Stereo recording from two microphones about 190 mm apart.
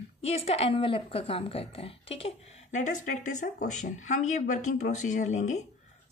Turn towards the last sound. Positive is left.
turn(degrees=40)  # may be behind; listen again after turning